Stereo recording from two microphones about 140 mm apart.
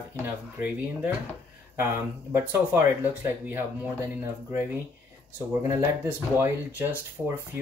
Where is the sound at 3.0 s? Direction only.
15° right (ahead or behind).